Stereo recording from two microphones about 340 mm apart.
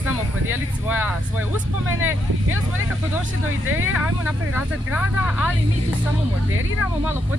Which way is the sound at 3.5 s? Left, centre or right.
Right.